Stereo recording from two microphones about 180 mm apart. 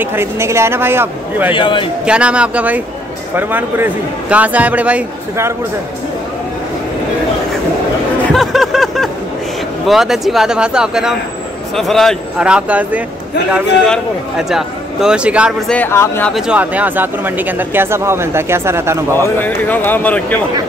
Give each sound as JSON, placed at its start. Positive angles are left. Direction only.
{"t": 0.0, "sound": "speech", "side_deg": -15}
{"t": 1.5, "sound": "a man's voice", "side_deg": 25}
{"t": 2.0, "sound": "speech", "side_deg": -5}
{"t": 8.3, "sound": "a sound", "side_deg": 0}
{"t": 9.8, "sound": "speech", "side_deg": 0}
{"t": 15.7, "sound": "speech", "side_deg": 10}
{"t": 16.3, "sound": "speech", "side_deg": -5}
{"t": 19.3, "sound": "speech", "side_deg": 10}